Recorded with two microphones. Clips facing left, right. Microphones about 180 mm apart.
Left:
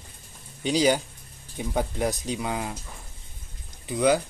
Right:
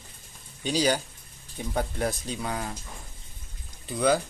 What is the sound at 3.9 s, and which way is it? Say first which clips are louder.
Speech: left 2 dB; 15° left (ahead or behind).